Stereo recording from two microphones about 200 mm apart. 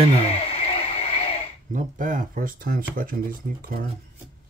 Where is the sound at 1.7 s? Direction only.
40° right (ahead or behind).